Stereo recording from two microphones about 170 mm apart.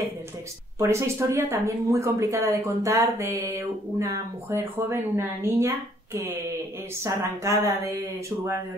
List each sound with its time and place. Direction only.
0.7 s speech: 15° right (ahead or behind)